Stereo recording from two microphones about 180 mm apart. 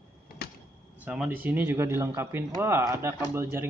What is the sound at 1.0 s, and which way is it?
Speech, 5° right (ahead or behind).